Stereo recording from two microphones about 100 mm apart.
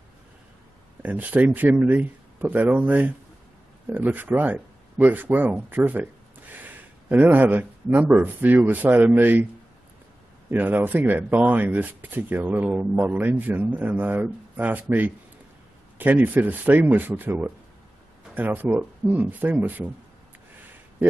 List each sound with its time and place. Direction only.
1.0 s speech: 15° right (ahead or behind)
10.5 s speech: 20° right (ahead or behind)